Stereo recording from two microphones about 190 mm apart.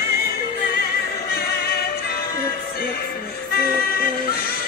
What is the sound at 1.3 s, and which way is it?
Music, 55° left (ahead or behind).